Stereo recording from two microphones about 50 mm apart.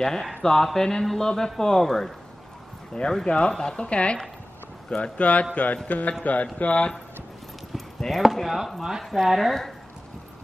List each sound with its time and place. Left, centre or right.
0.0 s speech: centre; by 5.8 s left
5.9 s mantra: left
6.2 s speech: left
7.7 s speech: centre